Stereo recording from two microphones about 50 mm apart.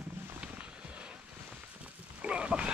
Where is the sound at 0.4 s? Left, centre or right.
Right.